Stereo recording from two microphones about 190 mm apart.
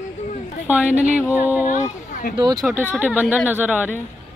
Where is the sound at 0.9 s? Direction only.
35° right (ahead or behind).